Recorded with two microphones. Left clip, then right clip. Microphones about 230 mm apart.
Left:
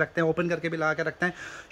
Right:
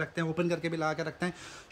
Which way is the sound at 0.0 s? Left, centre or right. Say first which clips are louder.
Left 7 dB; centre.